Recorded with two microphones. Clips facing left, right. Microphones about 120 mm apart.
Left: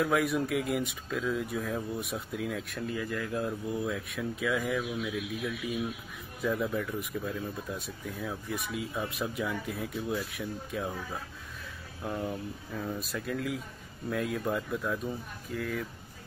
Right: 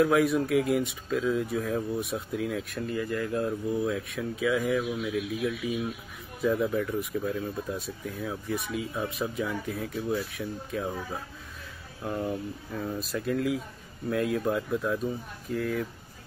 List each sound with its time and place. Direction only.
0.0 s speech: centre (ahead or behind)
12.0 s speech: centre (ahead or behind)